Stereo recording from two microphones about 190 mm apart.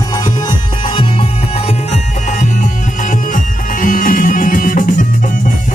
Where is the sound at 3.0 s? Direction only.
45° left (ahead or behind).